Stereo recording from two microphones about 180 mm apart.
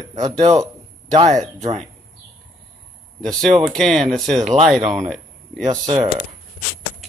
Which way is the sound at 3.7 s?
Centre (ahead or behind).